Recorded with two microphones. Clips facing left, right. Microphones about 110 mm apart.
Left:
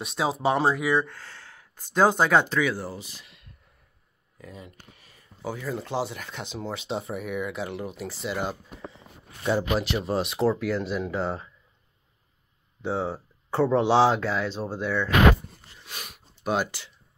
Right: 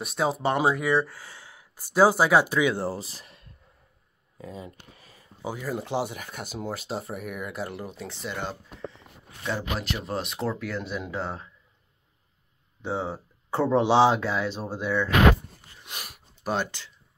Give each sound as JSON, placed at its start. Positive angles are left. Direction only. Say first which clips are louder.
{"t": 0.0, "sound": "speech", "louder": "even", "side_deg": 0}
{"t": 2.7, "sound": "speech", "louder": "right 4 dB", "side_deg": -30}
{"t": 4.9, "sound": "a sound", "louder": "right 3 dB", "side_deg": -35}
{"t": 5.4, "sound": "speech", "louder": "even", "side_deg": -10}
{"t": 10.0, "sound": "speech", "louder": "left 6 dB", "side_deg": 0}
{"t": 12.8, "sound": "speech", "louder": "left 2 dB", "side_deg": 0}
{"t": 15.8, "sound": "a sound", "louder": "even", "side_deg": -15}
{"t": 16.4, "sound": "speech", "louder": "left 2 dB", "side_deg": 10}